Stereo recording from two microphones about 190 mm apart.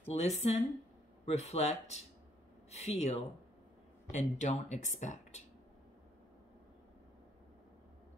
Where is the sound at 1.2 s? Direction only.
35° left (ahead or behind).